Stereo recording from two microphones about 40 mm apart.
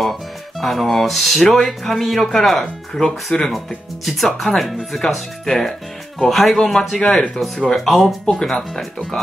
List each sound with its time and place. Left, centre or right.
0.0 s music: centre
1.5 s speech: centre